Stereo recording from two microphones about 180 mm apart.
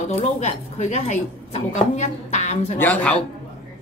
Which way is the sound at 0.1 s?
40° left (ahead or behind).